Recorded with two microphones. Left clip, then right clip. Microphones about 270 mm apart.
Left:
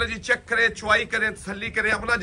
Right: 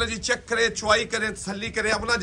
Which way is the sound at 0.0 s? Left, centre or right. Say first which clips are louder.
Left 2 dB; centre.